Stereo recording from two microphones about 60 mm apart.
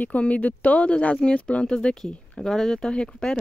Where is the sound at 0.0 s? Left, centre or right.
Left.